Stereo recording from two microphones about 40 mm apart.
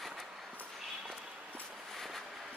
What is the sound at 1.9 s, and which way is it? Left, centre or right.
Vehicle, centre.